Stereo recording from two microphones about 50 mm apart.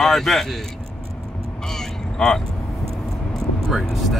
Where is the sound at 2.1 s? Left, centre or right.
Centre.